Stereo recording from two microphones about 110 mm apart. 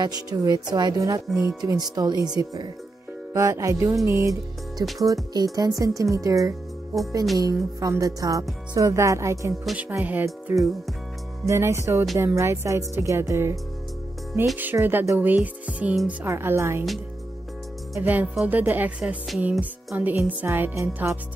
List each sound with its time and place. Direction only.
0.0 s speech: 35° right (ahead or behind)
1.3 s music: 10° right (ahead or behind)
1.6 s speech: 35° right (ahead or behind)
14.6 s music: 20° right (ahead or behind)
16.3 s speech: 25° right (ahead or behind)
18.0 s music: 15° right (ahead or behind)
20.2 s speech: 15° right (ahead or behind)